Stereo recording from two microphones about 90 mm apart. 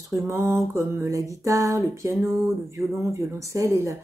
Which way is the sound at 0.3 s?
30° right (ahead or behind).